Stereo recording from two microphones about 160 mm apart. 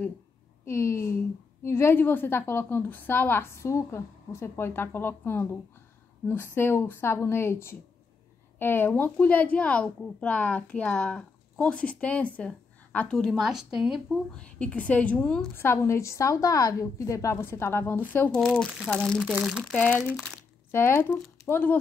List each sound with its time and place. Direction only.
0.7 s speech: 20° left (ahead or behind)
19.2 s speech: 10° right (ahead or behind)
20.7 s speech: 15° left (ahead or behind)